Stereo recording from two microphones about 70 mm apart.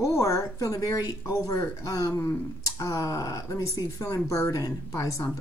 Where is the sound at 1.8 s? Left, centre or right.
Left.